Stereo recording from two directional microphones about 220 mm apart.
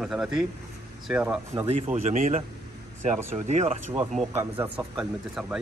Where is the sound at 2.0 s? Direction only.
35° right (ahead or behind).